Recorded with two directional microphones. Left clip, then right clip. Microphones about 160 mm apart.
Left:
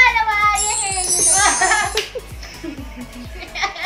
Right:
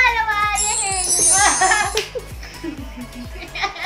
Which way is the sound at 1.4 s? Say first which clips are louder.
Even; 20° right (ahead or behind).